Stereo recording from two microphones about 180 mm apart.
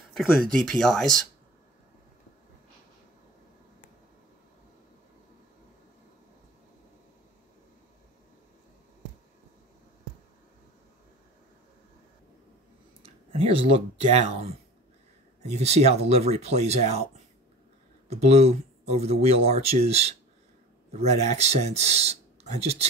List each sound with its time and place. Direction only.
0.1 s speech: centre (ahead or behind)
13.0 s speech: 35° right (ahead or behind)
15.5 s speech: 35° right (ahead or behind)